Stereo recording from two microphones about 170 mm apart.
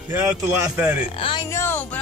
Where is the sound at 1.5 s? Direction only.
15° left (ahead or behind).